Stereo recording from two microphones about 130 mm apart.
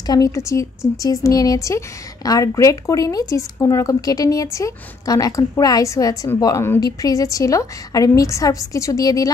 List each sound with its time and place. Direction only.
0.0 s speech: 30° left (ahead or behind)